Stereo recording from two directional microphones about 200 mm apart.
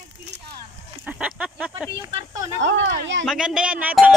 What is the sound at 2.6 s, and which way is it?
Speech, 65° right (ahead or behind).